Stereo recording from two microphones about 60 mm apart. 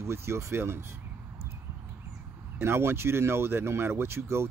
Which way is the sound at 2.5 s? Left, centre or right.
Right.